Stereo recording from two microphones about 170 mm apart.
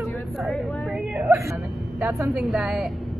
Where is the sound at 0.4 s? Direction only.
Centre (ahead or behind).